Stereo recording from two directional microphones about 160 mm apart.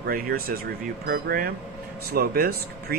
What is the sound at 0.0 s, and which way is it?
A man's voice, 65° right (ahead or behind).